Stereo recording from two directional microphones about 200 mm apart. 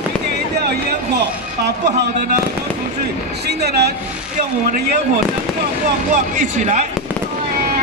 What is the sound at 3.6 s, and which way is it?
Speech, 55° right (ahead or behind).